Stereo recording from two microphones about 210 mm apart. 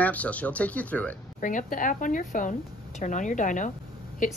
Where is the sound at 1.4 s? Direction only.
40° left (ahead or behind).